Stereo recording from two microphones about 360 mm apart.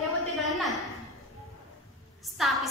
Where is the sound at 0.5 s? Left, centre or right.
Centre.